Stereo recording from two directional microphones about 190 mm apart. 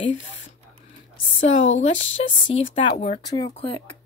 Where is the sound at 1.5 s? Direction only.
35° left (ahead or behind).